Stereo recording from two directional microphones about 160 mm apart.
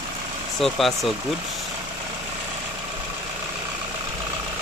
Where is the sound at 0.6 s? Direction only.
Centre (ahead or behind).